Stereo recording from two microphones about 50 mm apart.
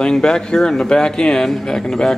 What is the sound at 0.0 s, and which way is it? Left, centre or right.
Speech, centre.